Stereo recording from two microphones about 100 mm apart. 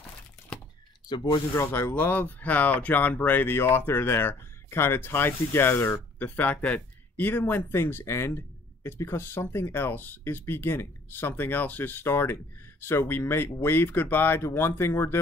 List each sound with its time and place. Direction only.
1.0 s speech: 45° left (ahead or behind)
1.5 s speech: 25° left (ahead or behind)